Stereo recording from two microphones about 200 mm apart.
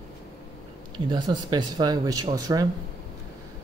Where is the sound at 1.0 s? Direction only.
20° right (ahead or behind).